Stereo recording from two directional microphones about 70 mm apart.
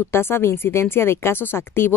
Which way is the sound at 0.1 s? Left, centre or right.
Left.